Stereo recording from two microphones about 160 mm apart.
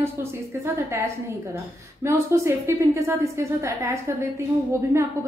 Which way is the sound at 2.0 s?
20° right (ahead or behind).